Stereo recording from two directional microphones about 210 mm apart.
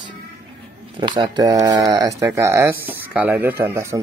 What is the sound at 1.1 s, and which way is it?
Speech, 20° right (ahead or behind).